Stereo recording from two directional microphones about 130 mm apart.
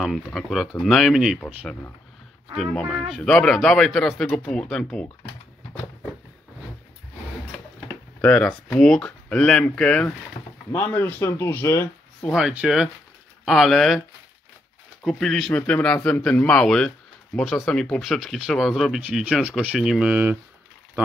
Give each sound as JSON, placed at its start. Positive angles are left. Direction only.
{"t": 0.0, "sound": "a man's voice", "side_deg": 0}
{"t": 8.2, "sound": "a man's voice", "side_deg": 10}
{"t": 12.4, "sound": "a man's voice", "side_deg": -5}
{"t": 15.0, "sound": "a man's voice", "side_deg": 0}